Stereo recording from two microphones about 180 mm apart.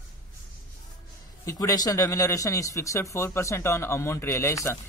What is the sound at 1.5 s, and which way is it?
Speech, 20° left (ahead or behind).